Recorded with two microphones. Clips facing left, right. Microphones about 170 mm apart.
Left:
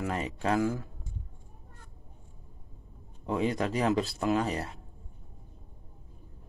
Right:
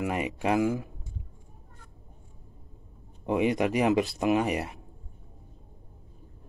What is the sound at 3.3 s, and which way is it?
Speech, 20° right (ahead or behind).